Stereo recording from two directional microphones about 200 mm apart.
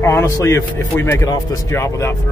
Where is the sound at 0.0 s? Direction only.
15° left (ahead or behind).